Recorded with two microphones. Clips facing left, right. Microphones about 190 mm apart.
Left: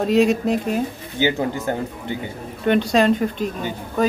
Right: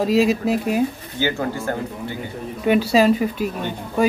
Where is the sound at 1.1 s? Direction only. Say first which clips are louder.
Left 3 dB; 15° left (ahead or behind).